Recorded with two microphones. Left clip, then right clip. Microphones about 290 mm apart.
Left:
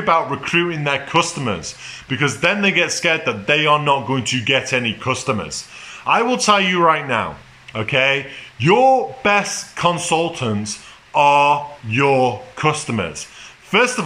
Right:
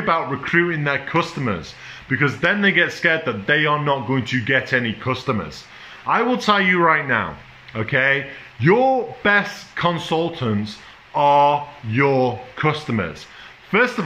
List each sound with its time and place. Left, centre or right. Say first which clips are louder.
0.0 s a man's voice: left 3 dB; centre